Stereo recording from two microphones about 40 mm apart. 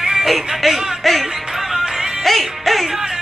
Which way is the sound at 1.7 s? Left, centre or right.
Centre.